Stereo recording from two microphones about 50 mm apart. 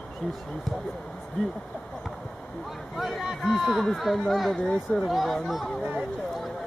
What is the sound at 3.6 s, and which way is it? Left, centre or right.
Speech, centre.